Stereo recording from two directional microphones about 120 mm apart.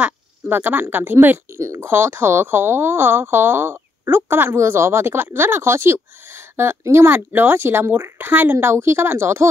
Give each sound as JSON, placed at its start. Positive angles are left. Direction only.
{"t": 0.0, "sound": "speech", "side_deg": -15}